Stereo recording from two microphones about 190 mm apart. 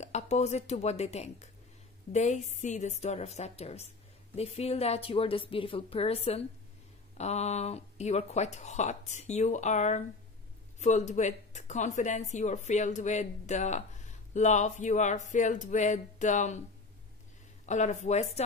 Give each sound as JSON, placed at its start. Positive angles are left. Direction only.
{"t": 0.0, "sound": "speech", "side_deg": 35}
{"t": 17.6, "sound": "speech", "side_deg": 40}